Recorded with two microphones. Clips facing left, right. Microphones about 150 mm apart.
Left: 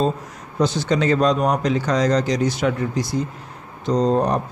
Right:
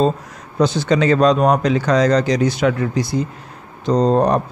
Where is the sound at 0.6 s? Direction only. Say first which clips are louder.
Right 4 dB; 90° right.